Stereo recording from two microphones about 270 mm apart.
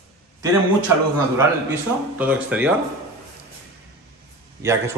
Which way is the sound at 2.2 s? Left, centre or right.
Centre.